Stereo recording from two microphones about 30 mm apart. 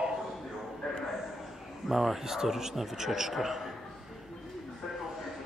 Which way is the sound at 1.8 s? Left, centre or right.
Centre.